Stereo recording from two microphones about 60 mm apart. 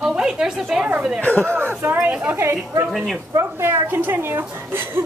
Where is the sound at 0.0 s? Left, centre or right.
Centre.